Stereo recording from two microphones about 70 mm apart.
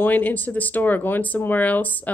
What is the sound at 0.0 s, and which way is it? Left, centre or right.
Speech, left.